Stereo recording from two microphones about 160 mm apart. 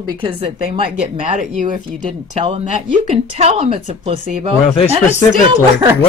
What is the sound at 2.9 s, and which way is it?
Speech, 40° right (ahead or behind).